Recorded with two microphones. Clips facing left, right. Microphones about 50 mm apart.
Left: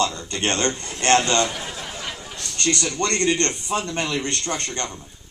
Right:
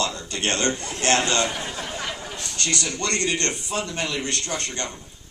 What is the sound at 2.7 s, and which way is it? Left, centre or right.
Speech, centre.